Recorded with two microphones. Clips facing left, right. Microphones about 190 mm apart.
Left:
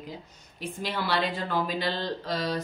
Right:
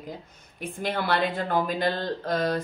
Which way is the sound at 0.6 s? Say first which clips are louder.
Right 3 dB; 55° right (ahead or behind).